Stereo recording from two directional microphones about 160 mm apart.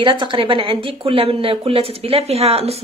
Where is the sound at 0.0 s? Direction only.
30° right (ahead or behind).